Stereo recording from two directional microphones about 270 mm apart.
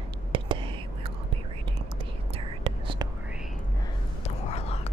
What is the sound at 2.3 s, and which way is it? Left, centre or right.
Whispering, centre.